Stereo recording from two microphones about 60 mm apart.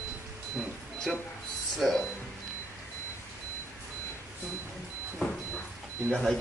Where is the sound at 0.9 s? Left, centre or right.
Centre.